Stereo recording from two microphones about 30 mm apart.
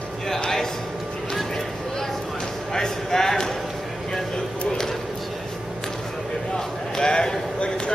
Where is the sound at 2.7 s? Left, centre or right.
Centre.